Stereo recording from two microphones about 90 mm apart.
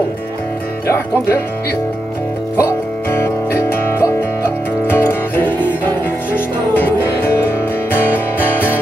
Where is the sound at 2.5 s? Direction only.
30° left (ahead or behind).